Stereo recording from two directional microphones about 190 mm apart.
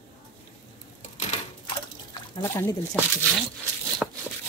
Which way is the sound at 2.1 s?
15° left (ahead or behind).